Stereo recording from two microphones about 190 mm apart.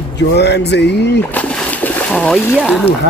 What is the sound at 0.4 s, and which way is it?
Speech, 65° left (ahead or behind).